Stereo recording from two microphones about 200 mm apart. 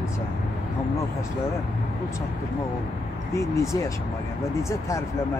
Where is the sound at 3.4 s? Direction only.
15° left (ahead or behind).